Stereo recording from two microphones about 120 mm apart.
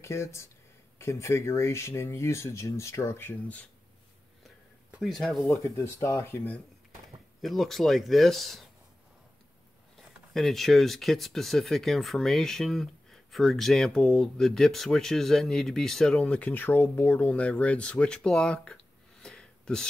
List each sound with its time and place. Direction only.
0.0 s speech: 25° left (ahead or behind)
4.9 s speech: centre (ahead or behind)
5.5 s speech: 25° left (ahead or behind)
7.4 s speech: centre (ahead or behind)
9.9 s speech: centre (ahead or behind)